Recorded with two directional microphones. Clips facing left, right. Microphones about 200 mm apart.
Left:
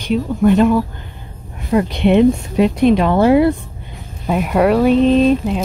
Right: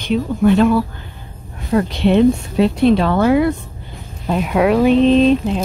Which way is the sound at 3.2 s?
30° left (ahead or behind).